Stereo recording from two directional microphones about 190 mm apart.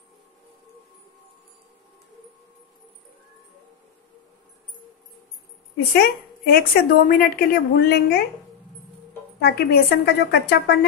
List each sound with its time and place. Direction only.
5.9 s a woman's voice: 55° left (ahead or behind)
9.4 s a woman's voice: 60° left (ahead or behind)